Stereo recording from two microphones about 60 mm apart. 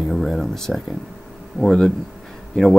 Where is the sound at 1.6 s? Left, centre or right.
Right.